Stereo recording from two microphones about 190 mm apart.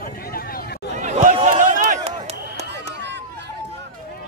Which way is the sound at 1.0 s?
45° right (ahead or behind).